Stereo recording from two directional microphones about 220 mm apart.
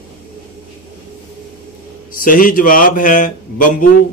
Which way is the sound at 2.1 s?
40° left (ahead or behind).